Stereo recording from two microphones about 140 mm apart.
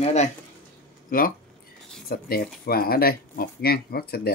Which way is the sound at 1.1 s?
90° left.